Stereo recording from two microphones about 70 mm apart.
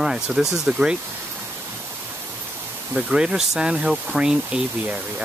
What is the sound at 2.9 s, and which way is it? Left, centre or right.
Speech, centre.